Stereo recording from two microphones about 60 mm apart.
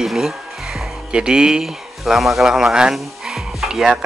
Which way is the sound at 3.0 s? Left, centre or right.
Centre.